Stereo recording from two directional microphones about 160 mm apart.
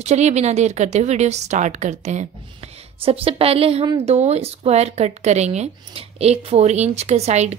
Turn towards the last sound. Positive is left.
turn(degrees=-45)  # may be behind; listen again after turning